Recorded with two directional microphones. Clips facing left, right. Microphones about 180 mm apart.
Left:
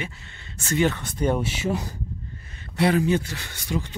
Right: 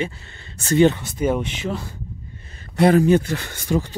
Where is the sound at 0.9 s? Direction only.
5° right (ahead or behind).